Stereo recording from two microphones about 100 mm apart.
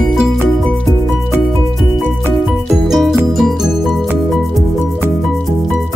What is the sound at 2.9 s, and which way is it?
Music, 5° right (ahead or behind).